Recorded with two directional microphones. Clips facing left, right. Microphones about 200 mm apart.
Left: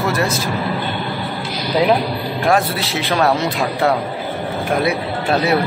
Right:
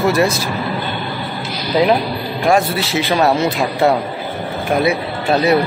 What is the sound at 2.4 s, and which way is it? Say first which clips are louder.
A man's voice: right 2 dB; centre (ahead or behind).